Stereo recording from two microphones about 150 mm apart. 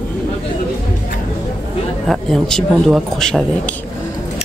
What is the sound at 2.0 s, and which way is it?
Speech, centre (ahead or behind).